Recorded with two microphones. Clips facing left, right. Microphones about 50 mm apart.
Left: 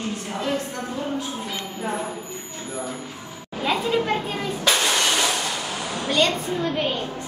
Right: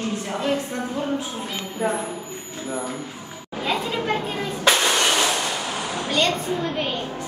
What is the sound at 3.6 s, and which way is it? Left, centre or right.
Speech, centre.